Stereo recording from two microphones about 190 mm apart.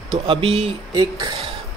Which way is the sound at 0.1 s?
30° right (ahead or behind).